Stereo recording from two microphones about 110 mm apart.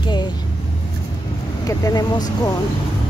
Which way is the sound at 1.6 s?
30° left (ahead or behind).